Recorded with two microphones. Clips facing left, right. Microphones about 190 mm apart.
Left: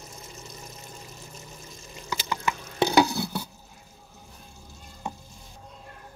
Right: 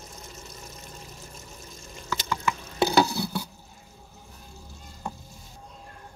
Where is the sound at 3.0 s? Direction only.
Centre (ahead or behind).